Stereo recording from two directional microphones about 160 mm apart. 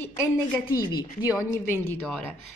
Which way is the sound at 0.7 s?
25° left (ahead or behind).